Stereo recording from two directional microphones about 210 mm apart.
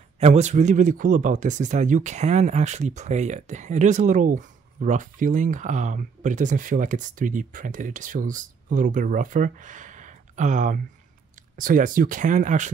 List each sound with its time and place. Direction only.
0.2 s speech: 35° right (ahead or behind)